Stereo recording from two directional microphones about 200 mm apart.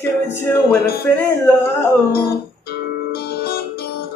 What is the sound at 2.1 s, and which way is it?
Music, 50° left (ahead or behind).